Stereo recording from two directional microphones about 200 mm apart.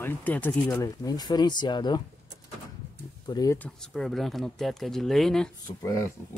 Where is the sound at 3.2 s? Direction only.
20° left (ahead or behind).